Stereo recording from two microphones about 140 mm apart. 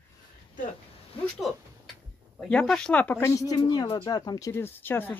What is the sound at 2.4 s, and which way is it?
Speech, 5° left (ahead or behind).